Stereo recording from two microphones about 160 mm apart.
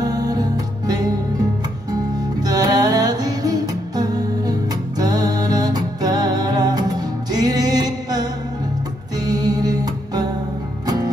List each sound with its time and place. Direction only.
0.0 s music: 25° right (ahead or behind)
2.4 s music: 25° right (ahead or behind)